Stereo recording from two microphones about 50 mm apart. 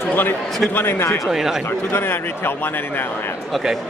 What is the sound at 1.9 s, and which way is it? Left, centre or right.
Speech, left.